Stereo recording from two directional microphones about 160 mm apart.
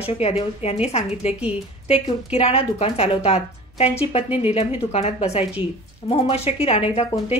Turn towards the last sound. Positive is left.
turn(degrees=40)  # may be behind; listen again after turning